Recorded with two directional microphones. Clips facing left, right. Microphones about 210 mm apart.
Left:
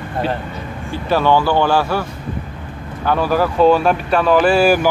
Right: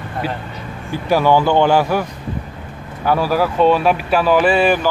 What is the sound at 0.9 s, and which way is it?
Speech, 10° right (ahead or behind).